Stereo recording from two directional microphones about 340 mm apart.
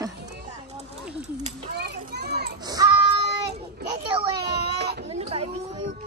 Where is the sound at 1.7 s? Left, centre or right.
Right.